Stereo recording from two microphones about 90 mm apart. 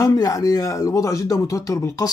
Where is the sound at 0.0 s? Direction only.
40° left (ahead or behind).